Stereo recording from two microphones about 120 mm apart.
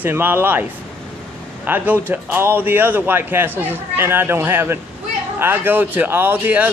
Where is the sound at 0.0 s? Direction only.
15° right (ahead or behind).